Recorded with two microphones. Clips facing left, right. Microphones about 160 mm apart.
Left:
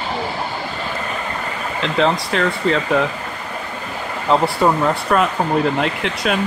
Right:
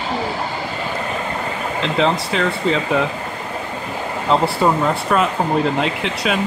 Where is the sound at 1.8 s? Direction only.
Centre (ahead or behind).